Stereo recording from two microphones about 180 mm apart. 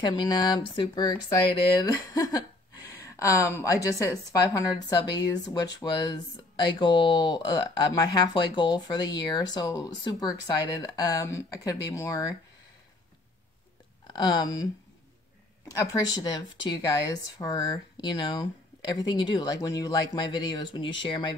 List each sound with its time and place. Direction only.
0.0 s a woman's voice: 20° left (ahead or behind)
14.1 s speech: 25° left (ahead or behind)
15.9 s speech: 20° left (ahead or behind)